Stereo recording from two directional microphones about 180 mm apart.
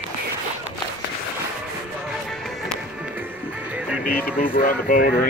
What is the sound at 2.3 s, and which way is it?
Music, centre (ahead or behind).